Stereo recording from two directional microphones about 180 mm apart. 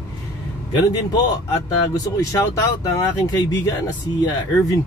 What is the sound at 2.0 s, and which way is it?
Speech, 20° left (ahead or behind).